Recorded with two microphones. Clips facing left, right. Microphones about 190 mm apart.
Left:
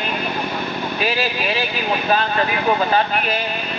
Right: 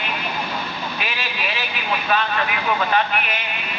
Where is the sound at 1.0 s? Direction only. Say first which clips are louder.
Left 7 dB; 35° left (ahead or behind).